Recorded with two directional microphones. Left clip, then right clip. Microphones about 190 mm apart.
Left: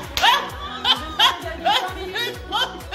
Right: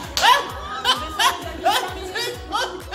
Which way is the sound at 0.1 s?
10° right (ahead or behind).